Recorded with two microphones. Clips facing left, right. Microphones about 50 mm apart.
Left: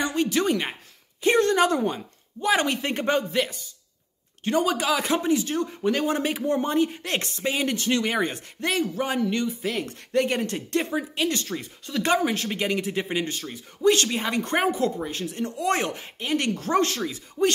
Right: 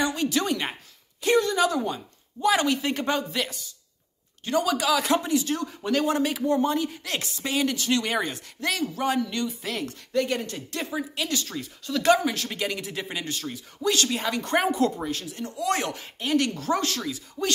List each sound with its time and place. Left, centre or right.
0.0 s a woman's voice: left
1.4 s speech: left
2.4 s speech: left
9.8 s speech: left
10.4 s speech: left
10.8 s speech: left
15.0 s speech: left
16.4 s speech: left